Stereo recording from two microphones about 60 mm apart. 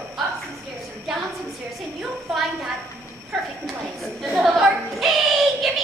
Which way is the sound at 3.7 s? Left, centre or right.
Centre.